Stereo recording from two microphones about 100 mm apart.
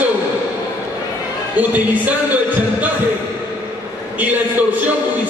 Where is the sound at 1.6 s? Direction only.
15° right (ahead or behind).